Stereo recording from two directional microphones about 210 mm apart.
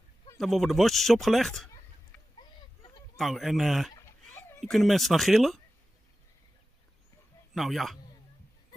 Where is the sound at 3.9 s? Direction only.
10° left (ahead or behind).